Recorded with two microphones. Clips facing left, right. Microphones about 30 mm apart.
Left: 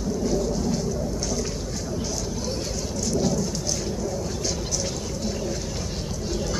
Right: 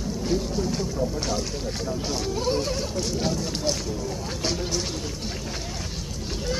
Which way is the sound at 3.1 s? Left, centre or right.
Right.